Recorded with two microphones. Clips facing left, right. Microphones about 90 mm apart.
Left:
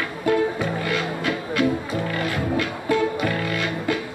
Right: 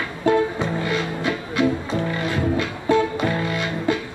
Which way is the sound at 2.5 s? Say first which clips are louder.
Right 3 dB; 25° right (ahead or behind).